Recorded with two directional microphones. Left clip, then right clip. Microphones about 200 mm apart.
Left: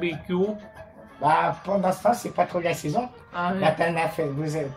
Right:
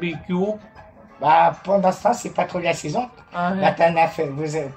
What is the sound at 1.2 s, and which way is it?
Speech, 15° left (ahead or behind).